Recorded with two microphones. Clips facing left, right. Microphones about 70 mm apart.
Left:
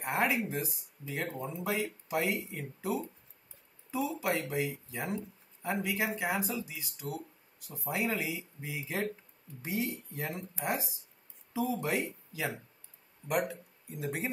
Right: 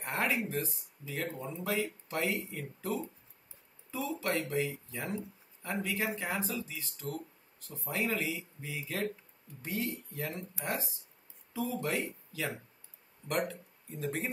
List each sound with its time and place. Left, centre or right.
0.0 s speech: centre